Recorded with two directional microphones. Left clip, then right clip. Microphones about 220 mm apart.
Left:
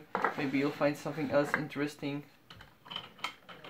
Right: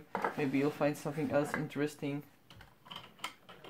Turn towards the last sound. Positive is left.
turn(degrees=0)  # may be behind; listen again after turning